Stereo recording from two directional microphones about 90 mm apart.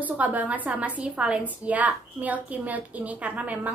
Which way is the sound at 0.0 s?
15° right (ahead or behind).